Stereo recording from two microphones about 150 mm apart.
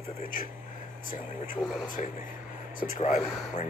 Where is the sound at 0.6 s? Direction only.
65° left (ahead or behind).